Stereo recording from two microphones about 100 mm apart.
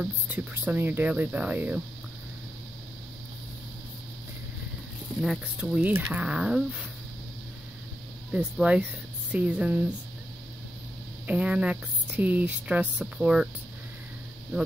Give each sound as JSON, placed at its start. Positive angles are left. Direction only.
{"t": 0.0, "sound": "speech", "side_deg": -15}
{"t": 5.2, "sound": "speech", "side_deg": -5}
{"t": 8.6, "sound": "speech", "side_deg": -10}
{"t": 11.2, "sound": "speech", "side_deg": -10}